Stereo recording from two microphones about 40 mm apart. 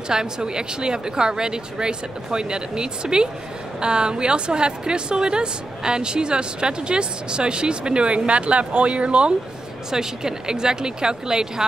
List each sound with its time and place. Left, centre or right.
0.1 s a woman's voice: centre
9.8 s speech: centre